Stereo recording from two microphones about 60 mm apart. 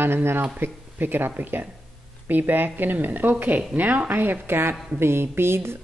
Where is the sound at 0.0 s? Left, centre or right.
Right.